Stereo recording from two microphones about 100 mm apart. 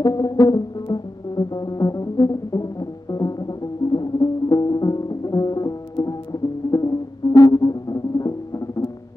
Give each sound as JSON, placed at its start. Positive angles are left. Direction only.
{"t": 0.0, "sound": "music", "side_deg": 40}